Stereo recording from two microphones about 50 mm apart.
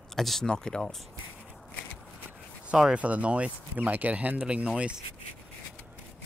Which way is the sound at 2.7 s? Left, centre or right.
Centre.